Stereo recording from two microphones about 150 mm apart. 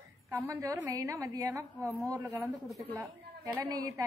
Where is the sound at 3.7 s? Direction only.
25° right (ahead or behind).